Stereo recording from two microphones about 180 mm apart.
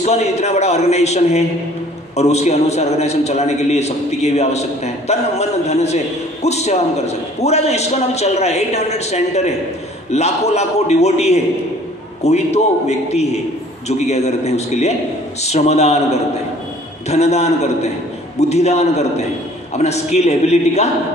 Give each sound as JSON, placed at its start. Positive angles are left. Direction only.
{"t": 0.0, "sound": "a man's voice", "side_deg": 40}